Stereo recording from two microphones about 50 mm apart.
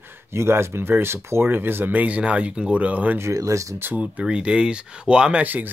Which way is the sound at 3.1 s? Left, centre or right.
Right.